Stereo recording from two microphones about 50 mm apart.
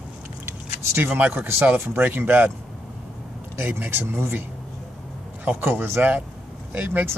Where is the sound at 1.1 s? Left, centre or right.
Right.